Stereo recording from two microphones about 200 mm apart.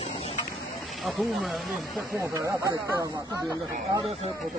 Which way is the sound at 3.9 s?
30° right (ahead or behind).